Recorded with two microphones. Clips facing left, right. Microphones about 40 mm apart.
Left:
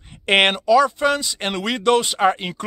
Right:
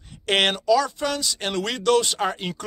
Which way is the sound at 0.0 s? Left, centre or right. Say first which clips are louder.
Left 5 dB; left.